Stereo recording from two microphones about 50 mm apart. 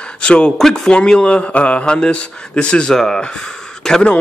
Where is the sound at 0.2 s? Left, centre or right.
Left.